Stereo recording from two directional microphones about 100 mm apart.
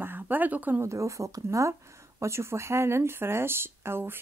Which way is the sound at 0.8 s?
30° right (ahead or behind).